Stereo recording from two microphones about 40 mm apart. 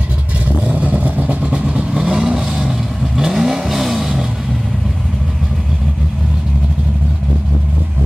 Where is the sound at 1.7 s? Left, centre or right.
Right; by 4.3 s centre.